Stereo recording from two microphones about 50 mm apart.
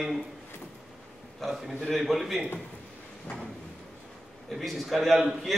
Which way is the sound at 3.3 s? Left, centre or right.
Left.